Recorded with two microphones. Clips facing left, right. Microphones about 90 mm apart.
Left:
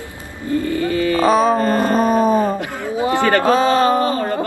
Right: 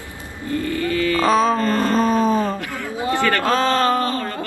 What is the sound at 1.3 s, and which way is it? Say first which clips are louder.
Speech: left 2 dB; 5° left (ahead or behind).